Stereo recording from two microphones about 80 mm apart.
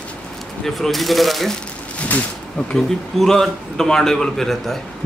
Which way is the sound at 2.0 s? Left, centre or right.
Centre.